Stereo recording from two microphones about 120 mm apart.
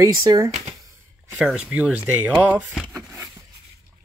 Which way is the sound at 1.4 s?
10° right (ahead or behind).